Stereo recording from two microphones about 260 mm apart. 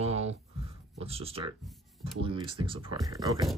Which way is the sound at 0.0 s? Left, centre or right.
Right.